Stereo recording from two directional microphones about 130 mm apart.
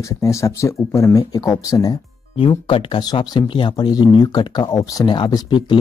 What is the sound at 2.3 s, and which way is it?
Speech, 40° left (ahead or behind).